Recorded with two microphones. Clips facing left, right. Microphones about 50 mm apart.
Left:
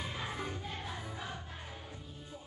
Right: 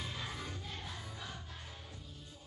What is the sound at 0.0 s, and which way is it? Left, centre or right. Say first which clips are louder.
Music: left 4 dB; centre.